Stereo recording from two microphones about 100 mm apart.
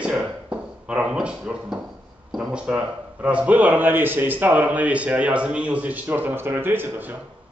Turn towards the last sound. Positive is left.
turn(degrees=-20)  # may be behind; listen again after turning